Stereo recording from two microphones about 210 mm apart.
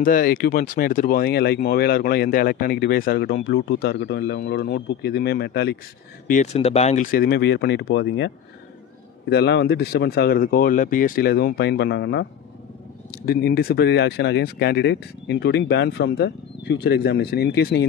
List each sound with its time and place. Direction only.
0.0 s speech: 40° left (ahead or behind)
6.2 s speech: 35° left (ahead or behind); by 8.3 s 60° left (ahead or behind)
9.3 s speech: 55° left (ahead or behind)